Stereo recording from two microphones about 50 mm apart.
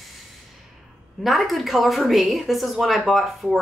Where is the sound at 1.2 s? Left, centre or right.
Centre.